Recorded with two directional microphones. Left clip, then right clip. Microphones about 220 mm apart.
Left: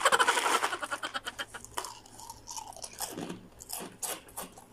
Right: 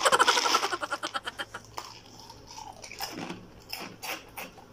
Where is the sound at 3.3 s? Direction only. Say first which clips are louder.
Right 3 dB; 15° left (ahead or behind).